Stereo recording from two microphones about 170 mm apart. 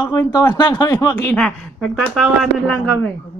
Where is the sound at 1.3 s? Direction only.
5° left (ahead or behind).